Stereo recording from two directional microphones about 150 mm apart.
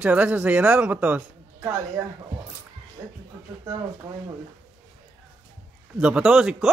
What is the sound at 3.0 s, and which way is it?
Music, 25° right (ahead or behind).